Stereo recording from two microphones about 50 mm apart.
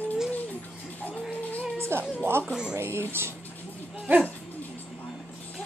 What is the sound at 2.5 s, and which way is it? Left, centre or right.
Speech, centre.